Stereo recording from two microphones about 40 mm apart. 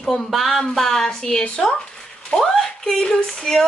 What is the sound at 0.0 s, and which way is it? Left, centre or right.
A woman's voice, centre.